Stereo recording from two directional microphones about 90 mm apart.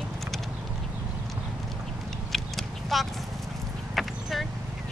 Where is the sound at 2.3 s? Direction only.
Centre (ahead or behind).